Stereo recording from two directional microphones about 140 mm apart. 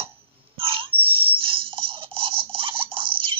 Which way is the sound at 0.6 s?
40° right (ahead or behind).